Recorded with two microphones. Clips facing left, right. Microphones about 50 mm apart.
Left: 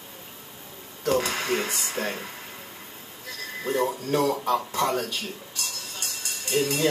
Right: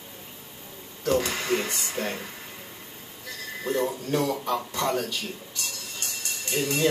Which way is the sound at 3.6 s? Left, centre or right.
Left.